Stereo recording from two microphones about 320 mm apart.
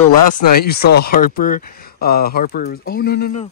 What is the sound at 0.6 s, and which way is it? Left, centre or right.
Speech, left.